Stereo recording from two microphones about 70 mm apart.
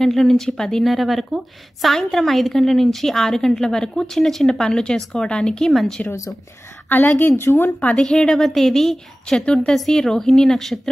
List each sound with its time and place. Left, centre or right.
0.0 s a woman's voice: centre
6.0 s speech: left
6.9 s speech: left
8.0 s a woman's voice: centre